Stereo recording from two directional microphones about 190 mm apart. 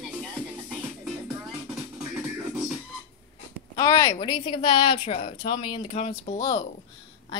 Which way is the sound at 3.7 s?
20° left (ahead or behind).